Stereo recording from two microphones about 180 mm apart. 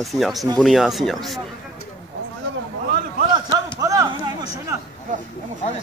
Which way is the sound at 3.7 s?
20° right (ahead or behind).